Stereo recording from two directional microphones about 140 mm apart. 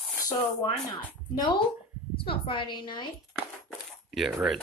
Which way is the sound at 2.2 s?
35° left (ahead or behind).